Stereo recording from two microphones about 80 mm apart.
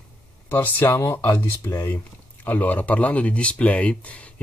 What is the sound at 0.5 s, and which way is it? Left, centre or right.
Speech, left.